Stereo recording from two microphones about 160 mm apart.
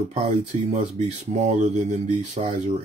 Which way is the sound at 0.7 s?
45° right (ahead or behind).